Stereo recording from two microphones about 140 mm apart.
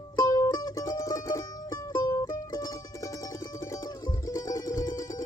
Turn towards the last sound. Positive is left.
turn(degrees=25)  # may be behind; listen again after turning